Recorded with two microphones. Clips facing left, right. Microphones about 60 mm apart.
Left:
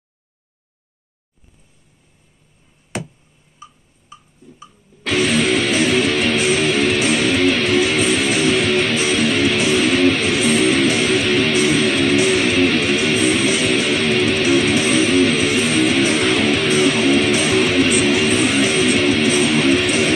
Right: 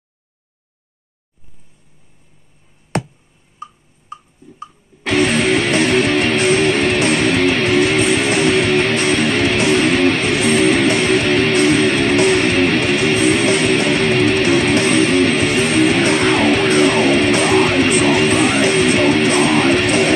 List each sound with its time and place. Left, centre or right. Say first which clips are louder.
5.0 s music: right 2 dB; centre